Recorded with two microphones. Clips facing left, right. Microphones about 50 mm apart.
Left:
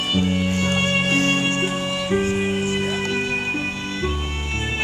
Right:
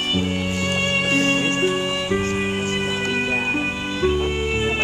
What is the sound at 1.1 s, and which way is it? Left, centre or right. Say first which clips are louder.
Music: right 2 dB; left.